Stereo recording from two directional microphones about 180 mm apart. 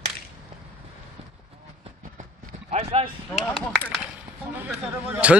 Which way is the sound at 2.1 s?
40° right (ahead or behind).